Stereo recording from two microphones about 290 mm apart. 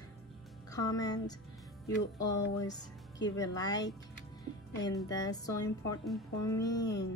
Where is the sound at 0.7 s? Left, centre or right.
Centre.